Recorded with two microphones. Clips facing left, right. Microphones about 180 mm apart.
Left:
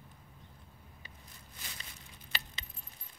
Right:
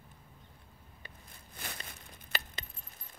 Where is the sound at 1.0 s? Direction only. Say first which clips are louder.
Right 1 dB; 55° right (ahead or behind).